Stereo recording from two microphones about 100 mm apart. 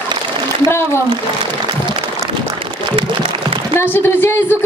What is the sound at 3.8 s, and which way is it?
Speech, 25° left (ahead or behind).